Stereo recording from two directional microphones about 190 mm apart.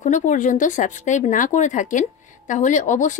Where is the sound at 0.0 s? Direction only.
40° left (ahead or behind).